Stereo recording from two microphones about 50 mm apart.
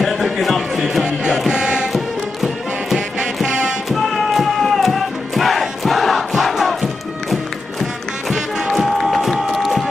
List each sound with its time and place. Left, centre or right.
0.0 s a sound: centre
1.5 s music: centre
1.9 s music: centre
3.9 s chant: centre
7.8 s music: centre